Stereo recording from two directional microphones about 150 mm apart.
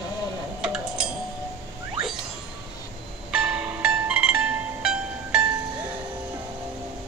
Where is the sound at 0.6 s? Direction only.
5° right (ahead or behind).